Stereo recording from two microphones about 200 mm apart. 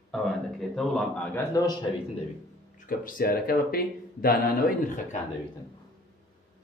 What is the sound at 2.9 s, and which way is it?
Speech, 45° left (ahead or behind).